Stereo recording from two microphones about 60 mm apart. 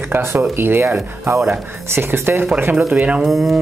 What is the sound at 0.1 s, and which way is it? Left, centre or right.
Speech, right.